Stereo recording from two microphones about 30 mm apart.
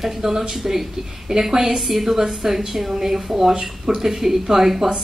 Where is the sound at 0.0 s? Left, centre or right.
Centre.